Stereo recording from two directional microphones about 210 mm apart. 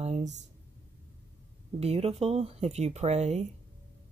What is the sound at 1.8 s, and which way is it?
Speech, 30° right (ahead or behind).